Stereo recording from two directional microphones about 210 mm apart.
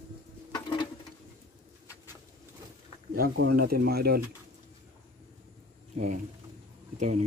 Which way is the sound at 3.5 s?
50° right (ahead or behind).